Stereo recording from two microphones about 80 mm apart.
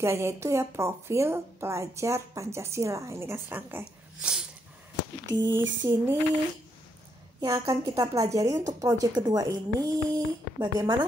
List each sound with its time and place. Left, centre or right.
0.0 s speech: right
4.2 s dog: centre
5.5 s speech: right
7.4 s speech: right
9.1 s speech: right